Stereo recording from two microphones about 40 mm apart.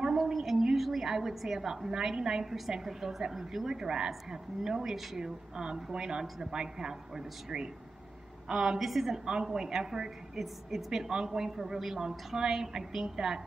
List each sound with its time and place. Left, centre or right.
0.0 s a sound: centre
2.7 s a woman's voice: centre
8.7 s a woman's voice: centre